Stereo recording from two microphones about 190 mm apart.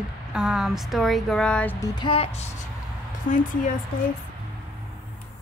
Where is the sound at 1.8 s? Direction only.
20° left (ahead or behind).